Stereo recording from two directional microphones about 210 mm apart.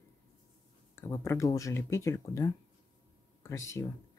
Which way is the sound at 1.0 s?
15° left (ahead or behind).